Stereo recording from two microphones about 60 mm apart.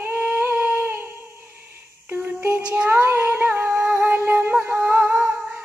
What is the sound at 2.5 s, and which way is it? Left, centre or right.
Child singing, centre.